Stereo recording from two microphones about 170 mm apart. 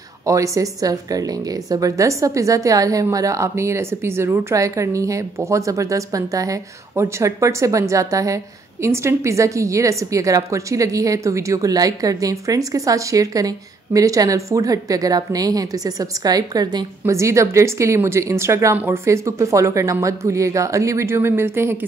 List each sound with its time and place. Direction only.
0.3 s a woman's voice: 20° right (ahead or behind)